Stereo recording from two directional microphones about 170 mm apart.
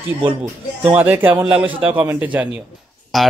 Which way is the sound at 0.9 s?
10° right (ahead or behind).